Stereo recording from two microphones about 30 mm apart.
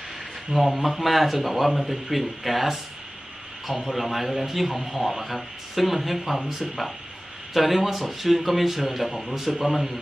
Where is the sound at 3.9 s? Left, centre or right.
Centre.